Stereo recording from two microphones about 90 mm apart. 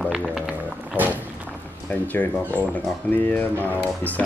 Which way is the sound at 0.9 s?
20° right (ahead or behind).